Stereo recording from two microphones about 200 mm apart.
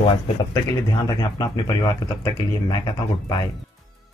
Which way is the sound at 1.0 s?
20° left (ahead or behind).